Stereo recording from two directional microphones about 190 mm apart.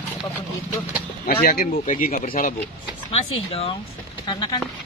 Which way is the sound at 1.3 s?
50° left (ahead or behind).